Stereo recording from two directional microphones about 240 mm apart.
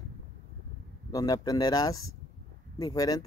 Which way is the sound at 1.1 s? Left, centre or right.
Centre.